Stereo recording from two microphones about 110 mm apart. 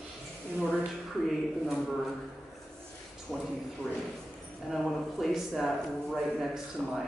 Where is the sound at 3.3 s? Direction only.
Centre (ahead or behind).